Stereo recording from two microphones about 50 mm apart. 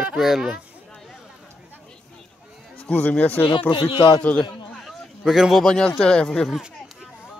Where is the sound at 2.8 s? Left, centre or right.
Left.